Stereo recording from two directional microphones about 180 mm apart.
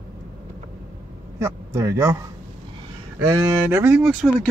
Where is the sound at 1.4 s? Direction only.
15° right (ahead or behind).